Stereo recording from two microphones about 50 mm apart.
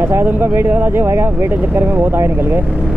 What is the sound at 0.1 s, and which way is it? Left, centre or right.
Speech, right.